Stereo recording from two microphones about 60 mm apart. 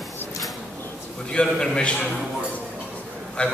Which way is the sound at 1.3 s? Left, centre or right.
Centre.